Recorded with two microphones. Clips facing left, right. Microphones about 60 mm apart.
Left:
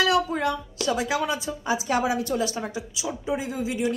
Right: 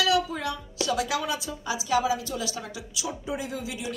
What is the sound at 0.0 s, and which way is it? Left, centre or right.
A woman's voice, left.